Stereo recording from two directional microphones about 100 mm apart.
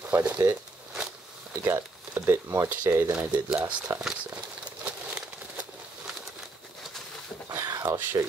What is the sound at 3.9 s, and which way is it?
Crumpling, 30° right (ahead or behind).